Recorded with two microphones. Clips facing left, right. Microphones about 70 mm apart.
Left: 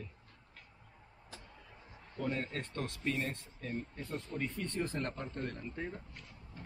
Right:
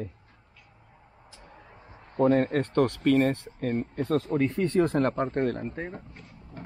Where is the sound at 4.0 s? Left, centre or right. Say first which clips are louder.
Right 18 dB; right.